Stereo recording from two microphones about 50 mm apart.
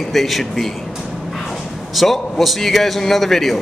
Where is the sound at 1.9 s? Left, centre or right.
Centre.